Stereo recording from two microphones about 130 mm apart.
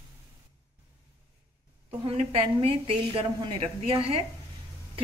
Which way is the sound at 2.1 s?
50° right (ahead or behind).